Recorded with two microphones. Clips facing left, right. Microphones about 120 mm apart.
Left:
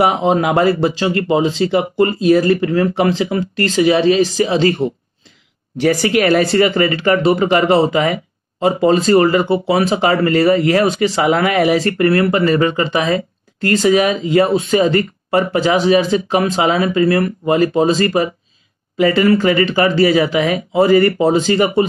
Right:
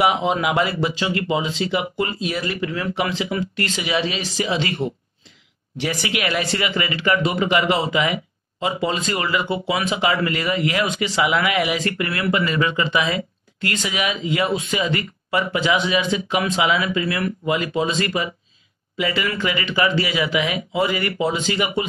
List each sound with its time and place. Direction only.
0.0 s speech: 40° left (ahead or behind)